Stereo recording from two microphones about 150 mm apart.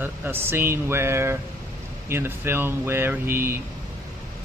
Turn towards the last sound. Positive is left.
turn(degrees=-15)  # may be behind; listen again after turning